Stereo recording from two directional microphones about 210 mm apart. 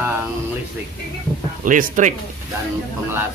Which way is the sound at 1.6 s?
40° right (ahead or behind).